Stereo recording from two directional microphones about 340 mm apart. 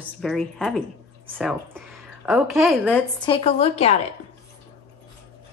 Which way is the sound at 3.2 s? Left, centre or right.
Centre.